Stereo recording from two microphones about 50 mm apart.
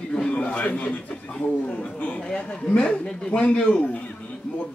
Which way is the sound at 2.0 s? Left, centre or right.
Left.